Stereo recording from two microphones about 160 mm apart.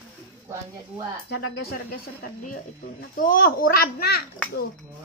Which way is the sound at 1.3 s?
80° left.